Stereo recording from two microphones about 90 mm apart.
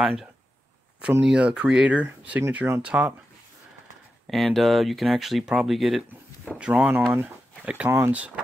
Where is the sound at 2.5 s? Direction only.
25° right (ahead or behind).